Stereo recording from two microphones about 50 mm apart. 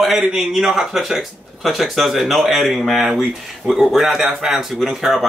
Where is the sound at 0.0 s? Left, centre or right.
Centre.